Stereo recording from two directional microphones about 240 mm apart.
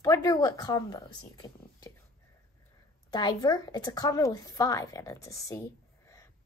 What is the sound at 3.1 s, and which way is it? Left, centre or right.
A woman's voice, centre.